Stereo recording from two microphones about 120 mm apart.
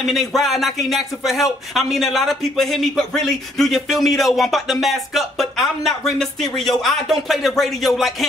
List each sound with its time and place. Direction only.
0.0 s speech: centre (ahead or behind)